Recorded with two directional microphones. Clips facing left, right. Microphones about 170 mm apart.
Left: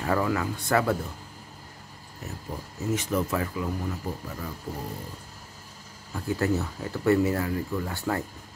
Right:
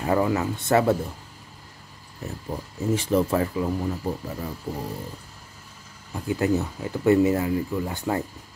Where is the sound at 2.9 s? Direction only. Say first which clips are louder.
Right 5 dB; 30° right (ahead or behind).